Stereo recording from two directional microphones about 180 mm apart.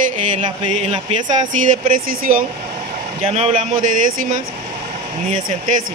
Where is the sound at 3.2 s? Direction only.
35° right (ahead or behind).